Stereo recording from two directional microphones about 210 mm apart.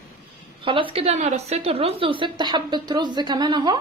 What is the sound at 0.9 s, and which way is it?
A woman's voice, 30° right (ahead or behind).